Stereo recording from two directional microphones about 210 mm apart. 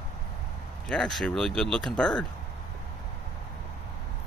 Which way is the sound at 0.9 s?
5° left (ahead or behind).